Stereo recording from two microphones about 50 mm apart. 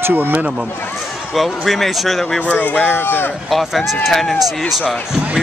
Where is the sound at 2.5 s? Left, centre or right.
Left.